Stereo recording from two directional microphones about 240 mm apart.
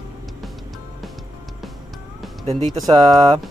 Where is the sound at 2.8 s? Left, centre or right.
Centre.